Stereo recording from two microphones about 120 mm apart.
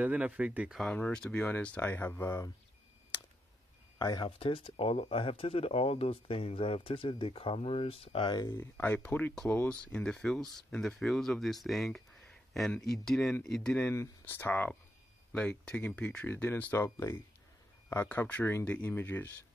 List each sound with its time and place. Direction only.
0.0 s speech: 10° right (ahead or behind)
0.7 s speech: 5° left (ahead or behind); by 2.5 s 25° left (ahead or behind)
4.0 s speech: 35° left (ahead or behind)
4.4 s speech: 50° left (ahead or behind)
8.3 s speech: 35° left (ahead or behind)
8.7 s speech: 15° left (ahead or behind)
16.8 s speech: 25° left (ahead or behind)
18.0 s speech: 15° left (ahead or behind)